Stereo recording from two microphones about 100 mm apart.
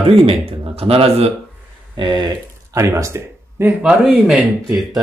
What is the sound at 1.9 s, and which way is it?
Speech, 50° right (ahead or behind).